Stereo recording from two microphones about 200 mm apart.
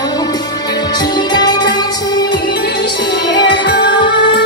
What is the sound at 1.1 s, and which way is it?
Music, 20° left (ahead or behind).